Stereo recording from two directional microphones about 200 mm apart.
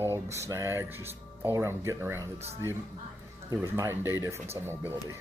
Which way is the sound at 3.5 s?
15° right (ahead or behind).